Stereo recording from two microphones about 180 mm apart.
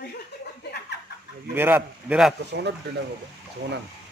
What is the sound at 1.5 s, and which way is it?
Speech, 10° right (ahead or behind).